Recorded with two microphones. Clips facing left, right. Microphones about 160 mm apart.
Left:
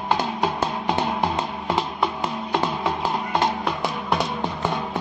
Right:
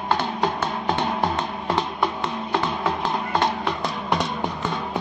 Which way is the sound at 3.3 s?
10° left (ahead or behind).